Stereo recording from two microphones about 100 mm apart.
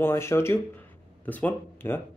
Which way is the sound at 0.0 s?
25° left (ahead or behind).